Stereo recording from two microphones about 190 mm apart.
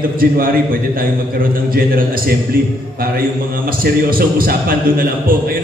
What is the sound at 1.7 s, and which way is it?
Speech, 50° right (ahead or behind).